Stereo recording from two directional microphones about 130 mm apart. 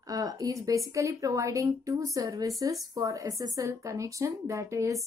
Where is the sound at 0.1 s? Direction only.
30° right (ahead or behind).